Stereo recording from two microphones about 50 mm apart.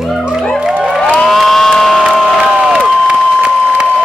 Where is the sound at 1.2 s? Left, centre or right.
Centre.